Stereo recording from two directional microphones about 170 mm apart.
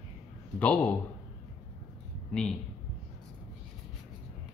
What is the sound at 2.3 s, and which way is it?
Speech, 5° left (ahead or behind).